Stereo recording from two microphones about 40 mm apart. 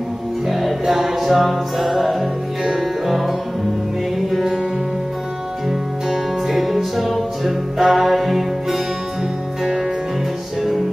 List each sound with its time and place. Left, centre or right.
0.5 s music: centre
5.7 s music: centre